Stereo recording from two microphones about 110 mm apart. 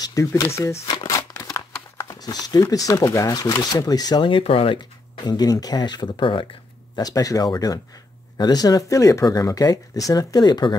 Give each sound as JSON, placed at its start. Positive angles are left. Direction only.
{"t": 0.0, "sound": "speech", "side_deg": 30}
{"t": 0.9, "sound": "shuffling cards", "side_deg": 30}
{"t": 2.6, "sound": "speech", "side_deg": 30}
{"t": 4.3, "sound": "speech", "side_deg": 60}
{"t": 7.0, "sound": "speech", "side_deg": 35}